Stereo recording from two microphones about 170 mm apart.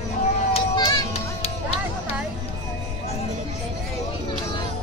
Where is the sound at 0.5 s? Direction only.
25° left (ahead or behind).